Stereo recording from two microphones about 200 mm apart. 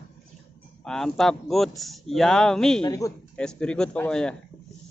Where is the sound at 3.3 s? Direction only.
5° left (ahead or behind).